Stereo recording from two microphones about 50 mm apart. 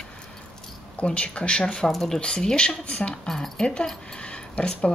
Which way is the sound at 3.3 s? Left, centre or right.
Centre.